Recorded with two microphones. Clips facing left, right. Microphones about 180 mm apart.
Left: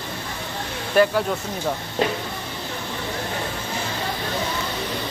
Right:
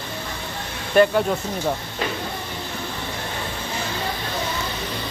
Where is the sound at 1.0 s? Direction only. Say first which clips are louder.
Right 2 dB; 5° left (ahead or behind).